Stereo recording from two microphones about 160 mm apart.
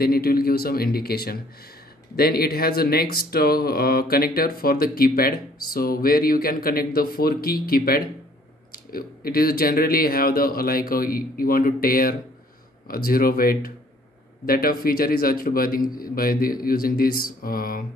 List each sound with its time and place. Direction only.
0.0 s speech: 70° left (ahead or behind)